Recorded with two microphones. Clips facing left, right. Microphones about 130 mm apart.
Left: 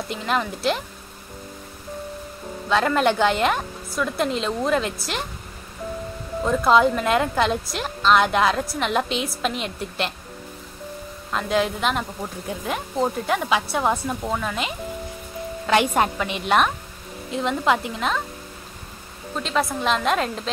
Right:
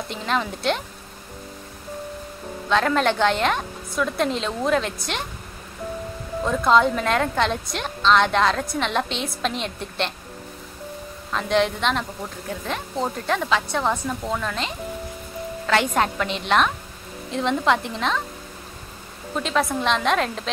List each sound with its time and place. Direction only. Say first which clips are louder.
0.1 s a woman's voice: left 1 dB; 5° left (ahead or behind)
2.7 s a woman's voice: left 1 dB; 5° left (ahead or behind)
6.4 s a woman's voice: left 1 dB; centre (ahead or behind)
11.3 s a woman's voice: right 1 dB; 5° left (ahead or behind)
19.3 s a woman's voice: right 1 dB; centre (ahead or behind)